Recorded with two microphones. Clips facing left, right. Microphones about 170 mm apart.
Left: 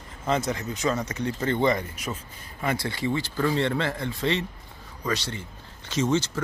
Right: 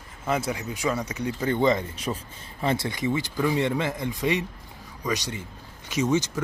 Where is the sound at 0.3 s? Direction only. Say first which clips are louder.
Left 1 dB; 10° right (ahead or behind).